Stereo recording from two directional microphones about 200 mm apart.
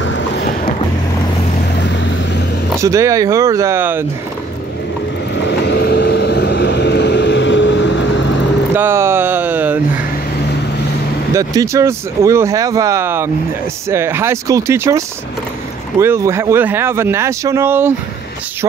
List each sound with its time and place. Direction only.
1.8 s vehicle: 60° left (ahead or behind)
2.8 s speech: 15° right (ahead or behind)
5.3 s vehicle: 60° left (ahead or behind)
8.7 s a sound: 10° right (ahead or behind)
11.3 s speech: 15° right (ahead or behind)